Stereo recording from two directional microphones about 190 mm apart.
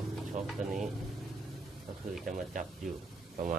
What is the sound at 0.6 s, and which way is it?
Speech, 40° right (ahead or behind).